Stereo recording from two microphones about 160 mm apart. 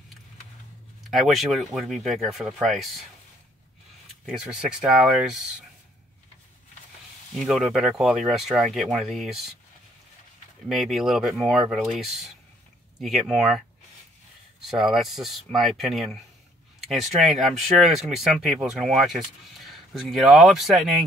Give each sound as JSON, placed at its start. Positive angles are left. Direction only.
{"t": 1.1, "sound": "speech", "side_deg": 0}
{"t": 4.3, "sound": "speech", "side_deg": -5}
{"t": 7.3, "sound": "speech", "side_deg": -5}
{"t": 10.7, "sound": "speech", "side_deg": 0}